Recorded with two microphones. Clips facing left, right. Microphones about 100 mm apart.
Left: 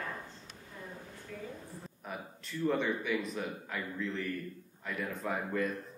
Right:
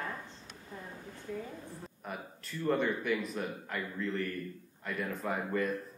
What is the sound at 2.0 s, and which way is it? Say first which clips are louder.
Speech: right 1 dB; centre (ahead or behind).